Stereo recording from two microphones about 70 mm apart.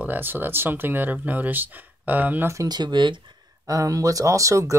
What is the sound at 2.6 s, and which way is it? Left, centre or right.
Speech, right.